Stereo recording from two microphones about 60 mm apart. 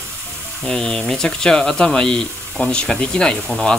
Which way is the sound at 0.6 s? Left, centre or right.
Centre.